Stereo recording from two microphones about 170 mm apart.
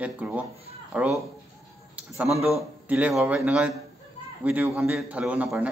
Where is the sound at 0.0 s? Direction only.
10° right (ahead or behind).